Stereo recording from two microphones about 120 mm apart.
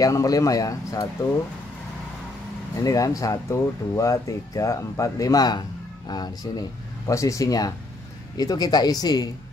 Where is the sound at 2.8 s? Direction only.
30° left (ahead or behind).